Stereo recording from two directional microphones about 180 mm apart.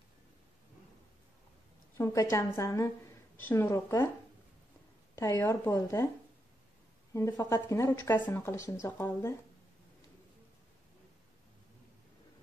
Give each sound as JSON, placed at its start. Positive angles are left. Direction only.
{"t": 2.0, "sound": "a woman's voice", "side_deg": 15}
{"t": 5.1, "sound": "a woman's voice", "side_deg": 15}
{"t": 7.2, "sound": "a woman's voice", "side_deg": 15}